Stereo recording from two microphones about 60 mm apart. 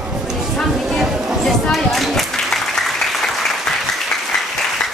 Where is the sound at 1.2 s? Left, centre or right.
Centre.